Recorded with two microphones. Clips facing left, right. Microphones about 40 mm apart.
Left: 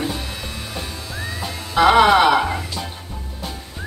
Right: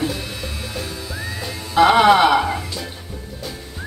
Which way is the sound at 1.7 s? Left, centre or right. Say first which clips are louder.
Even; centre.